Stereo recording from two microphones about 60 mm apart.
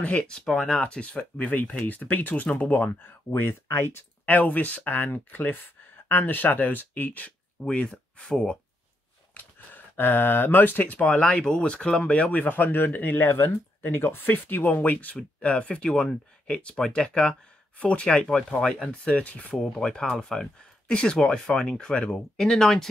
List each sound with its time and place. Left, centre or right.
0.0 s speech: centre
0.5 s speech: centre
0.7 s speech: centre; by 4.0 s left
4.3 s speech: left
7.6 s speech: centre
9.3 s speech: left; by 18.9 s centre
18.9 s speech: left